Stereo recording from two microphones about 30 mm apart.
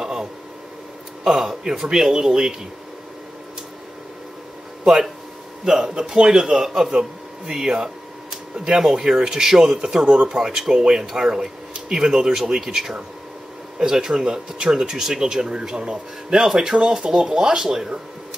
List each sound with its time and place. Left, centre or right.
0.0 s a sound: right
1.2 s a man's voice: centre
5.7 s speech: right
16.4 s speech: centre